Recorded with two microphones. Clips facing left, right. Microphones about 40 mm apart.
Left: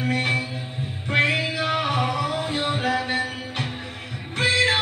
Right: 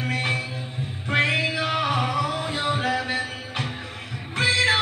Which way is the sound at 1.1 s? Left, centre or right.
Centre.